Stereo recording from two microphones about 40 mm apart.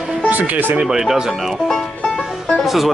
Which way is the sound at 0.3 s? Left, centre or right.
Right.